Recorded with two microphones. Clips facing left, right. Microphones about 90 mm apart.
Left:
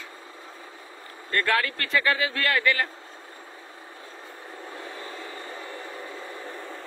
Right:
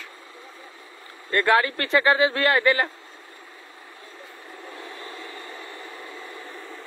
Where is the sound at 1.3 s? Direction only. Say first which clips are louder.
Right 5 dB; 20° right (ahead or behind).